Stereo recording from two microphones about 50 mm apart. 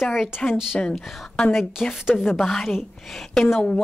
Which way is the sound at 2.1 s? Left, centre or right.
Left.